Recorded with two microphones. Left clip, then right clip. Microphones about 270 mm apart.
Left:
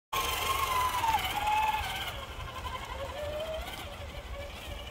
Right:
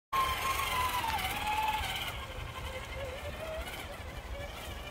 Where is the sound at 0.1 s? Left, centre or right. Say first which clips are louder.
Even; left.